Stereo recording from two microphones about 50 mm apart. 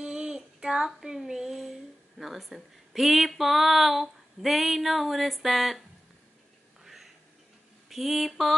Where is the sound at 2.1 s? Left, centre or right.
Centre.